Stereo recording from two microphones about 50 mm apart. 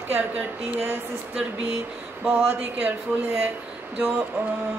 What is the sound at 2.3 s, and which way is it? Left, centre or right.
Speech, right.